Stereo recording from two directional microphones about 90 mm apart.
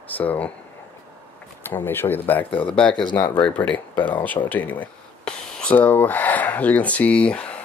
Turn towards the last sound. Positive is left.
turn(degrees=15)  # may be behind; listen again after turning